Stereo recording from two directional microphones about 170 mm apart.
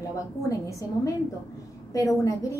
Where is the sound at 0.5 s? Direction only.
20° left (ahead or behind).